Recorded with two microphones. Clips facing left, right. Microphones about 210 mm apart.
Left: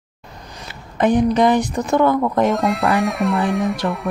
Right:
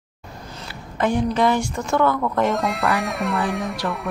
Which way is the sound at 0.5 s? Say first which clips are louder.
Even; 15° left (ahead or behind).